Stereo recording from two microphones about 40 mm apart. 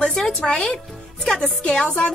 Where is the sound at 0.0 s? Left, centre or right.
Centre.